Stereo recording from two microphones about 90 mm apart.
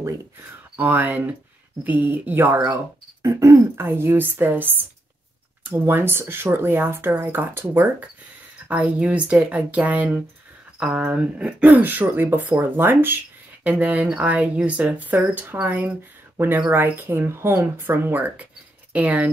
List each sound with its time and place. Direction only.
0.7 s speech: 20° right (ahead or behind)
3.2 s speech: 35° right (ahead or behind); by 19.2 s 15° right (ahead or behind)